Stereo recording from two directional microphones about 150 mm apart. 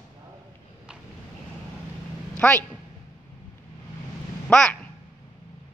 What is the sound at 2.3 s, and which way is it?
Speech, 10° left (ahead or behind).